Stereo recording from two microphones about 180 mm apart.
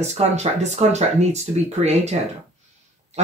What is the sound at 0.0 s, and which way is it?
A woman's voice, 35° right (ahead or behind).